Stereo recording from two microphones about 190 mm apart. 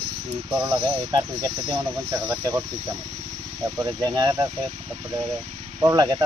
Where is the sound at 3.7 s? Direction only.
20° right (ahead or behind).